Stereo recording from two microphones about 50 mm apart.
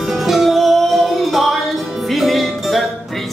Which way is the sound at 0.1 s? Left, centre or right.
Centre.